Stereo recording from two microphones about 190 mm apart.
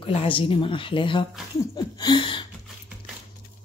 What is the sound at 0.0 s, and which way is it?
A woman's voice, 30° left (ahead or behind).